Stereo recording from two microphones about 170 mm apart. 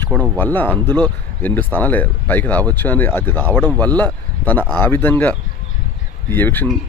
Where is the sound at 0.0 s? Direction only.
10° left (ahead or behind).